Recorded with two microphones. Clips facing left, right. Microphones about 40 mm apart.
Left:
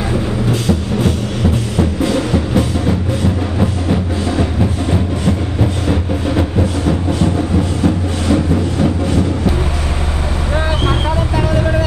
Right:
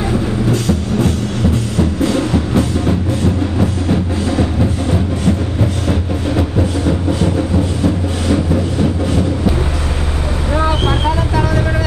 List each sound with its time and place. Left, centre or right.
1.8 s music: centre